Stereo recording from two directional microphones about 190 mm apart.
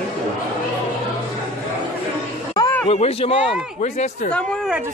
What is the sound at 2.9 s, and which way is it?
A man's voice, 30° left (ahead or behind).